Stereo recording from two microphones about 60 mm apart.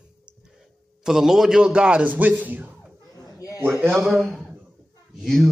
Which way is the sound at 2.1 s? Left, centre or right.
Right.